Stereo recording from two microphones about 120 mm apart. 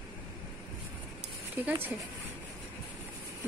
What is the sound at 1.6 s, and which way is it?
Speech, 15° right (ahead or behind).